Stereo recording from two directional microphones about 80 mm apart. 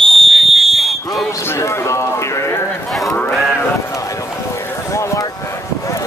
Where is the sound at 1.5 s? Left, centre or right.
Left.